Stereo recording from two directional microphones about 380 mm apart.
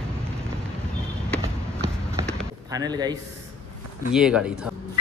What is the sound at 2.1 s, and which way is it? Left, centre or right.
Basketball bounce, centre.